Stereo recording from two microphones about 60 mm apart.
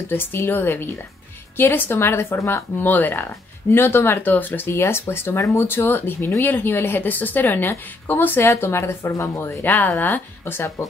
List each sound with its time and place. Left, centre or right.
0.1 s a woman's voice: left
9.7 s a woman's voice: left